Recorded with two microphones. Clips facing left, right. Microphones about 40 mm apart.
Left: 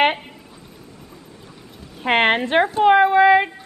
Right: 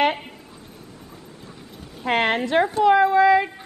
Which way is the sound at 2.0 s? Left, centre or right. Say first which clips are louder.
Left 4 dB; left.